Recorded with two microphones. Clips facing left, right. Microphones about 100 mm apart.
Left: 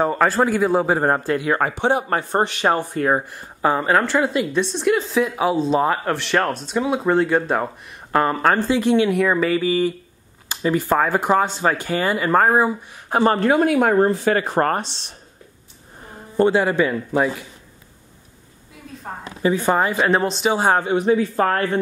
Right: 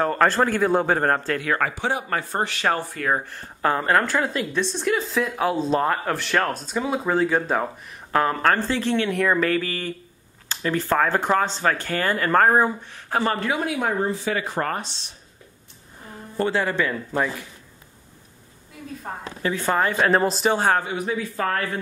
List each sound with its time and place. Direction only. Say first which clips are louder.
0.0 s speech: left 2 dB; 5° left (ahead or behind); by 3.3 s 25° left (ahead or behind)
3.3 s a woman's voice: left 3 dB; 10° left (ahead or behind)
13.1 s speech: left 6 dB; 30° left (ahead or behind)
13.4 s speech: left 8 dB; 50° left (ahead or behind)
16.3 s speech: left 6 dB; 20° left (ahead or behind)
18.9 s a woman's voice: right 2 dB; 5° right (ahead or behind)
19.4 s speech: left 4 dB; 15° left (ahead or behind); by 20.5 s centre (ahead or behind)
20.5 s speech: left 6 dB; 15° left (ahead or behind)
20.9 s speech: left 9 dB; 25° left (ahead or behind)